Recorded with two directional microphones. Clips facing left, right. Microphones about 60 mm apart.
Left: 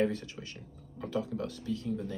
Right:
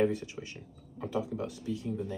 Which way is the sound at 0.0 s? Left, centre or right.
Centre.